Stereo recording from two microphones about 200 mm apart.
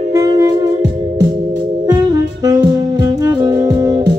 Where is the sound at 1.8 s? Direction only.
20° right (ahead or behind).